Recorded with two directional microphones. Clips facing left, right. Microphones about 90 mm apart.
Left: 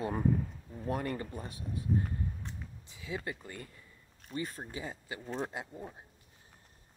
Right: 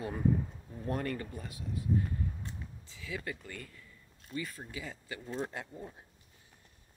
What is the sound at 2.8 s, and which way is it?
Speech, 20° left (ahead or behind).